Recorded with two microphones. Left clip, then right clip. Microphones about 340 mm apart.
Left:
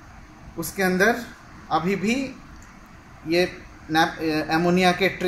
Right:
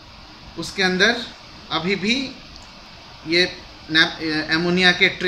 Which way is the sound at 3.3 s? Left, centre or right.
Centre.